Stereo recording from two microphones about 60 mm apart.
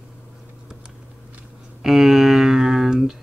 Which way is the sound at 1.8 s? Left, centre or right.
Centre.